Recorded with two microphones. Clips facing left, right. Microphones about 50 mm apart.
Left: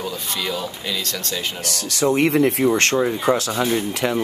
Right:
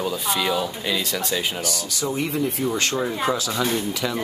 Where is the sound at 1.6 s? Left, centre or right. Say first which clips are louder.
Left 5 dB; left.